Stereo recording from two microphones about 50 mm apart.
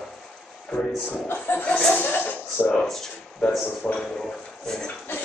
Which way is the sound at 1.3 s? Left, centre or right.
Left.